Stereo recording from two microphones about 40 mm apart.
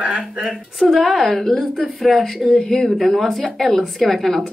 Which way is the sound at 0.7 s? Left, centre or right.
Centre.